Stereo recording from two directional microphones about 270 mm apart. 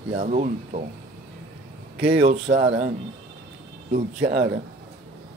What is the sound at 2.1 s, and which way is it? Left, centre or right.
Speech, right.